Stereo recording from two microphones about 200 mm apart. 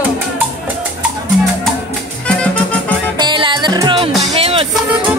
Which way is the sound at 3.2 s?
20° right (ahead or behind).